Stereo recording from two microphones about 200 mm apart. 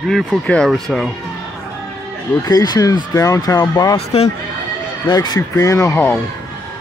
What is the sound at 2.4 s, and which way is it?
Speech, 20° left (ahead or behind).